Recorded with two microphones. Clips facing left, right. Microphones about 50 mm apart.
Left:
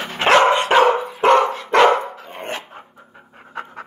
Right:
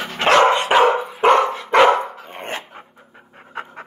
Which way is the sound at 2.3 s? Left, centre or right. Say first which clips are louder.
Left 2 dB; right.